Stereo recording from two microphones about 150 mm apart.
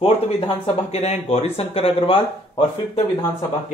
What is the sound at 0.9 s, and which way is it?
Speech, 45° left (ahead or behind).